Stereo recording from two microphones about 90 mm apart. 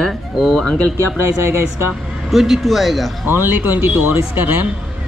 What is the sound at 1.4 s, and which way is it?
Speech, 30° right (ahead or behind).